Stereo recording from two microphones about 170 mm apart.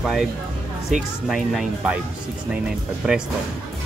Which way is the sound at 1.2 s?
5° right (ahead or behind).